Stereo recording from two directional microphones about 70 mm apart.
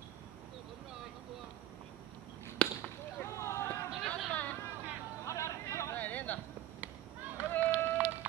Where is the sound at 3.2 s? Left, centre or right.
Left.